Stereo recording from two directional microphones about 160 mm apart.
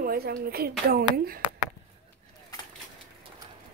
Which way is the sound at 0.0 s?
65° right (ahead or behind).